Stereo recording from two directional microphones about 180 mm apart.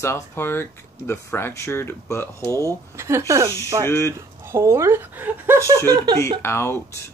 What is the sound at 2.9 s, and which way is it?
Speech, 15° right (ahead or behind).